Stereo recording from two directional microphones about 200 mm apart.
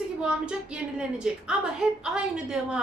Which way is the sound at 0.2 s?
5° right (ahead or behind).